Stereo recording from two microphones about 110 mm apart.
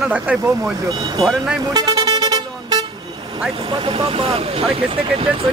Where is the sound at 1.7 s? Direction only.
35° right (ahead or behind).